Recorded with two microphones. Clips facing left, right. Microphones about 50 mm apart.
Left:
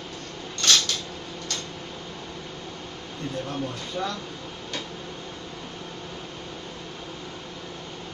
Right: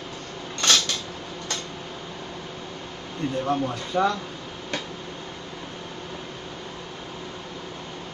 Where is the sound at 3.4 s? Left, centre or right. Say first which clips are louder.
Right 6 dB; right.